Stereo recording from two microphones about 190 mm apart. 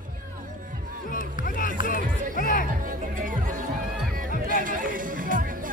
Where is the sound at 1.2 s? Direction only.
45° left (ahead or behind).